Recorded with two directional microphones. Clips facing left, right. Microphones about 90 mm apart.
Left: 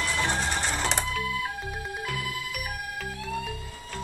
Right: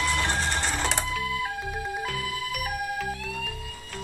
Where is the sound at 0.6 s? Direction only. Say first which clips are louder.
Even; centre (ahead or behind).